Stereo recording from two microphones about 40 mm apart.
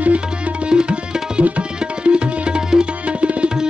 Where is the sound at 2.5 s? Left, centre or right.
Centre.